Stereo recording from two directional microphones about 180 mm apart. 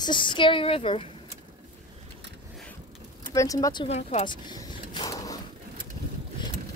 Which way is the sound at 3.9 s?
40° left (ahead or behind).